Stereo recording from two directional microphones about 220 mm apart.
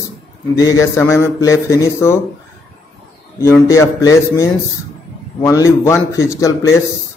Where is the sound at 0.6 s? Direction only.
15° left (ahead or behind).